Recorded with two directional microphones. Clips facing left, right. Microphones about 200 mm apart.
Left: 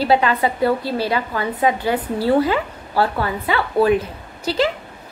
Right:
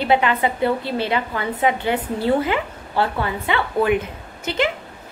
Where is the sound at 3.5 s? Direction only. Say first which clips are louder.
Left 3 dB; 35° left (ahead or behind).